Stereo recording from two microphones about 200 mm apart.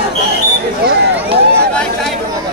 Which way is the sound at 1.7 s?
5° left (ahead or behind).